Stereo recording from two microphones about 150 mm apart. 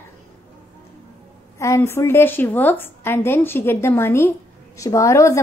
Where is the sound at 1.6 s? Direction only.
20° left (ahead or behind).